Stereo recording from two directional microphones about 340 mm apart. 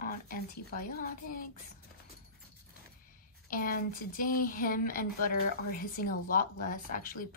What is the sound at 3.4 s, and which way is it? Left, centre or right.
Speech, left.